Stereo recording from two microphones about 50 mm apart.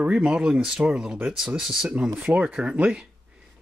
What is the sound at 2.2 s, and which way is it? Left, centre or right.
Speech, right.